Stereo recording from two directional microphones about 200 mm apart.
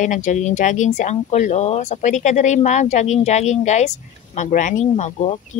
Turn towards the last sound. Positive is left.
turn(degrees=35)  # may be behind; listen again after turning